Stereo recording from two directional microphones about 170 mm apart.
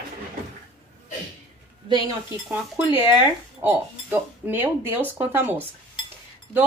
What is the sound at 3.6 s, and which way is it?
Speech, 10° right (ahead or behind).